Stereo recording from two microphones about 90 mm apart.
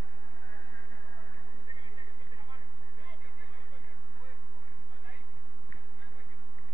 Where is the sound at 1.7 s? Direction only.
55° right (ahead or behind).